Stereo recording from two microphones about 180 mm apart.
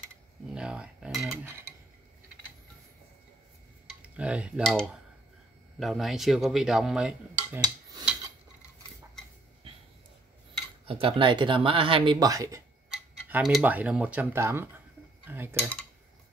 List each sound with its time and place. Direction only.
0.5 s cutlery: 5° right (ahead or behind)
4.2 s dishes: 5° right (ahead or behind)
10.9 s speech: 30° right (ahead or behind)
12.9 s speech: 5° right (ahead or behind)
15.2 s cutlery: 10° right (ahead or behind)